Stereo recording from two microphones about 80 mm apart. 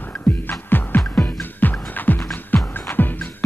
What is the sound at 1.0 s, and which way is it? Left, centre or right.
Music, centre.